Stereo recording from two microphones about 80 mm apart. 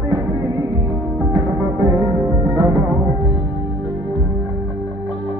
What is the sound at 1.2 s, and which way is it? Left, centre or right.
Music, right.